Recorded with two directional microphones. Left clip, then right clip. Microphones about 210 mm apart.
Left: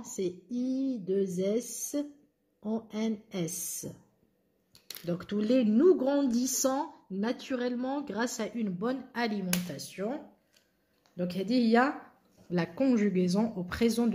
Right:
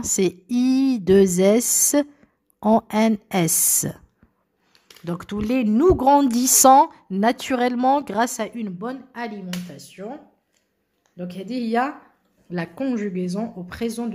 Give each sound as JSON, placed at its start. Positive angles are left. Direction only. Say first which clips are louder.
{"t": 0.1, "sound": "speech", "louder": "right 12 dB", "side_deg": -45}
{"t": 5.0, "sound": "speech", "louder": "right 4 dB", "side_deg": -30}
{"t": 9.2, "sound": "speech", "louder": "right 1 dB", "side_deg": 0}